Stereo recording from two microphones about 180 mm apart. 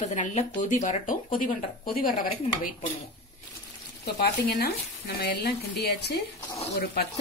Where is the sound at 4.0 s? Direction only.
60° left (ahead or behind).